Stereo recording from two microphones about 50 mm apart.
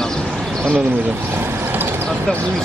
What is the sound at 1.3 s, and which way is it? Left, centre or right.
Mechanisms, right.